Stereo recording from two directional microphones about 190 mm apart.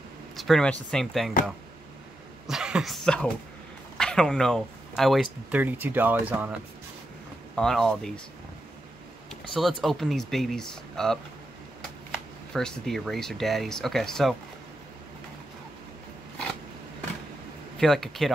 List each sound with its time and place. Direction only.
0.4 s speech: centre (ahead or behind)
2.4 s speech: 5° right (ahead or behind)
7.5 s speech: centre (ahead or behind)
9.3 s speech: centre (ahead or behind)
12.5 s speech: centre (ahead or behind)
17.7 s speech: centre (ahead or behind)